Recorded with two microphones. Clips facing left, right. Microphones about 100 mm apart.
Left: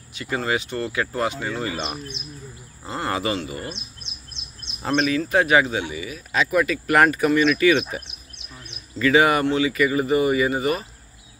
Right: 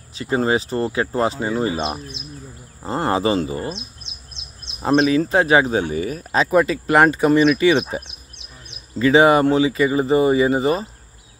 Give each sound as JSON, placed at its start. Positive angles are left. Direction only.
{"t": 0.1, "sound": "speech", "side_deg": -30}
{"t": 4.7, "sound": "speech", "side_deg": -25}